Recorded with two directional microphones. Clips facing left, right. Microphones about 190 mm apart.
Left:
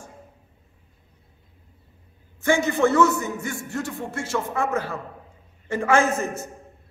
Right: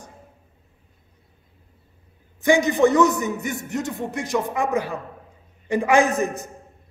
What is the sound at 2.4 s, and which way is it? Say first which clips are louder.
A man's voice: right 3 dB; 15° right (ahead or behind).